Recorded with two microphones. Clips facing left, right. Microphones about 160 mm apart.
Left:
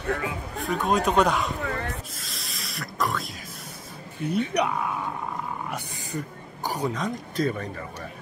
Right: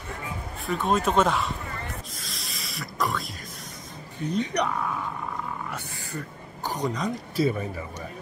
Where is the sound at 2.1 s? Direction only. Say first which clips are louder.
Even; centre (ahead or behind).